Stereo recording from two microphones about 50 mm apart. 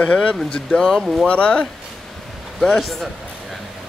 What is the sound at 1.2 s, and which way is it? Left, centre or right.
Speech, left.